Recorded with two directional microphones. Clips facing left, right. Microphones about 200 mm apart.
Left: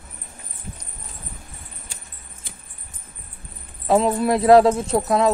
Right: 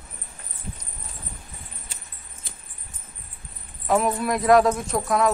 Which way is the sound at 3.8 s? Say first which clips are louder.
Left 4 dB; 25° left (ahead or behind).